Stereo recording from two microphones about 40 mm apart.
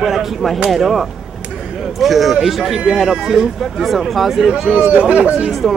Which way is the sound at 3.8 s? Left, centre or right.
Centre.